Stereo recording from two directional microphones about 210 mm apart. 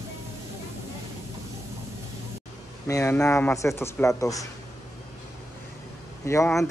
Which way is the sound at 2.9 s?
15° left (ahead or behind).